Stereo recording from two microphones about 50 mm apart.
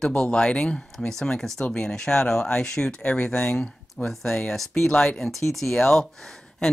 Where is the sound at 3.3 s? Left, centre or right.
Centre.